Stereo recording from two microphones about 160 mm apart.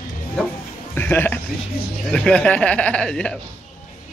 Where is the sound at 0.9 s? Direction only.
15° left (ahead or behind).